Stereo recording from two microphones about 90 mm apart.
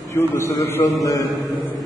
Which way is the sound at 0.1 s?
30° left (ahead or behind).